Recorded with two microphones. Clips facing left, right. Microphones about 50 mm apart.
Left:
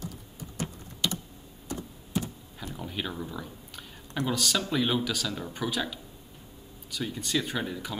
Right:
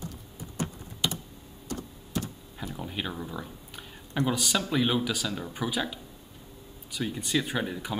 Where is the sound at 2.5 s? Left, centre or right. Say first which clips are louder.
Right 1 dB; centre.